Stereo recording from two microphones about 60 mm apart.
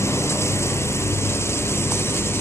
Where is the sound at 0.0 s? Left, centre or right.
Left.